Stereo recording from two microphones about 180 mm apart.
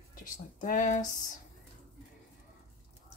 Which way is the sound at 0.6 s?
45° left (ahead or behind).